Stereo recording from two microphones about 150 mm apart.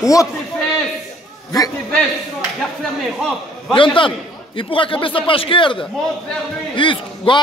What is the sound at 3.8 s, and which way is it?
A man's voice, 35° left (ahead or behind).